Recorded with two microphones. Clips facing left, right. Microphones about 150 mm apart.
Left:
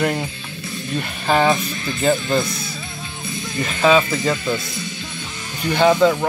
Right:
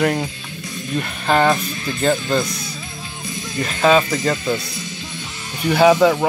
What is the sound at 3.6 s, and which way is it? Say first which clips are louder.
Speech: right 1 dB; centre (ahead or behind).